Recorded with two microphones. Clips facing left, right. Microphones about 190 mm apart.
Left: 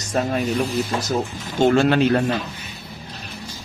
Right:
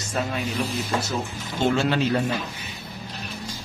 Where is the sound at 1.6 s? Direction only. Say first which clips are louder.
Left 6 dB; 55° left (ahead or behind).